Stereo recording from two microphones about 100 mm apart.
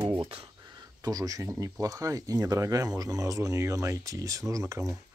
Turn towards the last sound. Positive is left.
turn(degrees=-30)  # may be behind; listen again after turning